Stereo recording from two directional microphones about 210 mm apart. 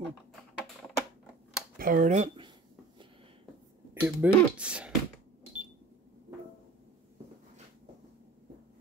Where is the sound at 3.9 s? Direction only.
5° right (ahead or behind).